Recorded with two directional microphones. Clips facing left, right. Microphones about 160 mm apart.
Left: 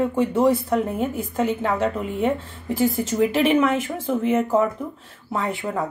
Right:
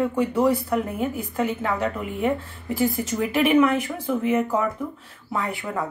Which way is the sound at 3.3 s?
25° left (ahead or behind).